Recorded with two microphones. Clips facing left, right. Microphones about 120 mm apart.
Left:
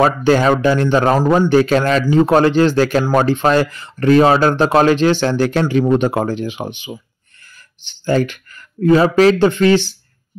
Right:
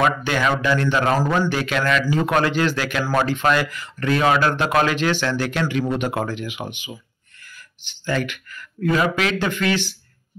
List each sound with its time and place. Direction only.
0.0 s speech: 35° left (ahead or behind)
1.2 s a man's voice: 20° left (ahead or behind)
1.5 s speech: 35° left (ahead or behind)